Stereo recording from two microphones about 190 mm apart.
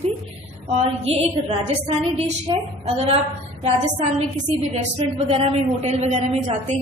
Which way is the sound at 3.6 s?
35° right (ahead or behind).